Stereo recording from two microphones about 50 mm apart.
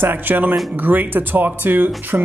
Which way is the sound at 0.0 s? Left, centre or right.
Right.